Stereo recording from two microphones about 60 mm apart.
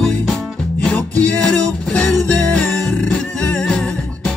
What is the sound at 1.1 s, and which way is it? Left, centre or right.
Music, left.